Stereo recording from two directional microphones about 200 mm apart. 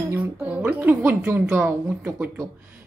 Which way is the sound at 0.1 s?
10° right (ahead or behind).